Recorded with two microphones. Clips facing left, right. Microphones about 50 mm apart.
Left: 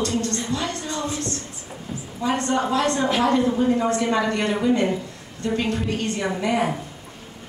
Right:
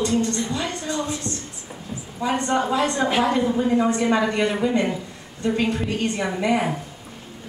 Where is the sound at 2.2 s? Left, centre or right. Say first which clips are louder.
Even; centre.